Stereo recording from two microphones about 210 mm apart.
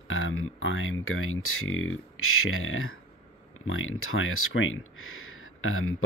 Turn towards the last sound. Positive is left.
turn(degrees=75)  # may be behind; listen again after turning